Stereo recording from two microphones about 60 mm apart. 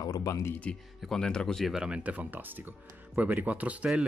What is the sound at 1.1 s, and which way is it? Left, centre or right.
Speech, centre.